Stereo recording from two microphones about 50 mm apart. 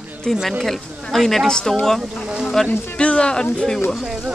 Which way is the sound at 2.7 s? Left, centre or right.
Left.